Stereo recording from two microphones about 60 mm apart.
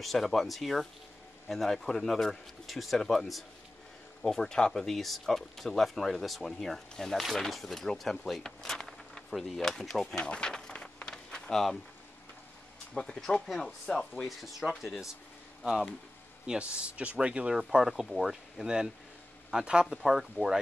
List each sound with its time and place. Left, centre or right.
0.0 s speech: centre
8.3 s a sound: centre
9.3 s speech: centre
10.2 s a sound: centre
12.9 s speech: centre
13.9 s speech: left
14.2 s speech: centre
16.7 s speech: right